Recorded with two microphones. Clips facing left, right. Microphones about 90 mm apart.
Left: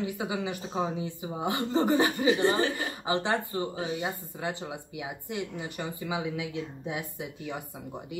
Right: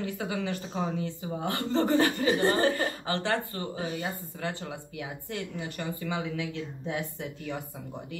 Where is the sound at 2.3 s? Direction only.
40° right (ahead or behind).